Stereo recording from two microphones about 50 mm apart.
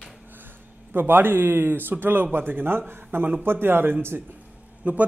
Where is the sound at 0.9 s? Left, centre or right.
Right.